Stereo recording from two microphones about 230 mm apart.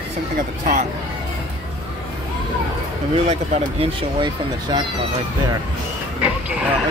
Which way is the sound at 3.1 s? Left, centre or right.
Right.